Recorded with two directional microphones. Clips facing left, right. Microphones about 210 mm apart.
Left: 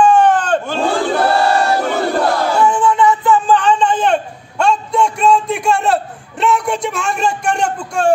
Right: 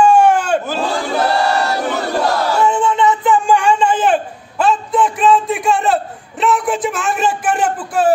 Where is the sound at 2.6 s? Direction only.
20° right (ahead or behind).